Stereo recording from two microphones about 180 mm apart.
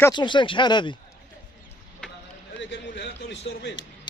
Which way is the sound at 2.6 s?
75° left (ahead or behind).